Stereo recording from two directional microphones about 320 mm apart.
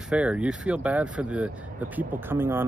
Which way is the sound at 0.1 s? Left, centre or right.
Centre.